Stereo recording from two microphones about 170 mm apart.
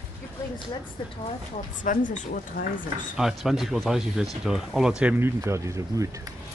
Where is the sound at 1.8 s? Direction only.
50° left (ahead or behind).